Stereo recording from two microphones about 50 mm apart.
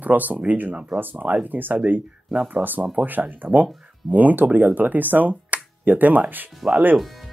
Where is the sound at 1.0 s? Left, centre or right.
Right.